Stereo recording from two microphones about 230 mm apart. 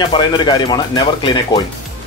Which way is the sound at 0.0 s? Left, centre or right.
Centre.